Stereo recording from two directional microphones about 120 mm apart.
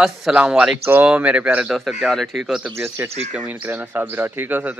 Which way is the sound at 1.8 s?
Centre (ahead or behind).